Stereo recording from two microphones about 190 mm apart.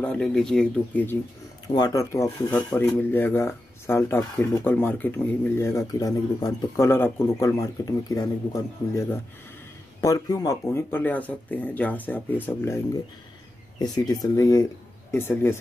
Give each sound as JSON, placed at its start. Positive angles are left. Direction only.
{"t": 0.0, "sound": "speech", "side_deg": 5}
{"t": 1.8, "sound": "speech", "side_deg": 15}